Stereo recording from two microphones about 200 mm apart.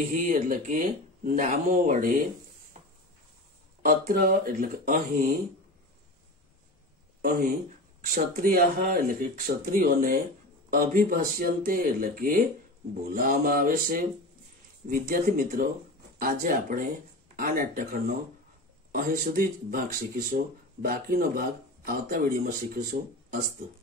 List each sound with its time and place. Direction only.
0.1 s speech: 40° right (ahead or behind)
3.8 s speech: 45° right (ahead or behind)
7.2 s speech: 40° right (ahead or behind)